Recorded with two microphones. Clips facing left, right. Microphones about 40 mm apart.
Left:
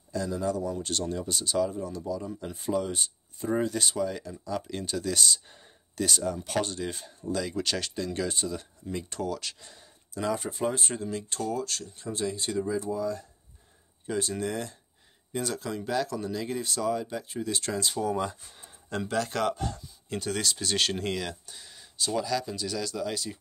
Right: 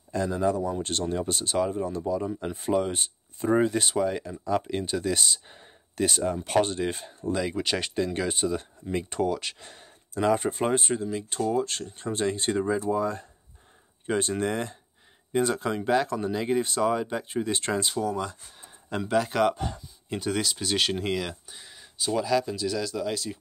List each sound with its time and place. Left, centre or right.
0.1 s speech: right
10.8 s speech: centre
11.6 s speech: right
18.0 s speech: centre
18.6 s speech: centre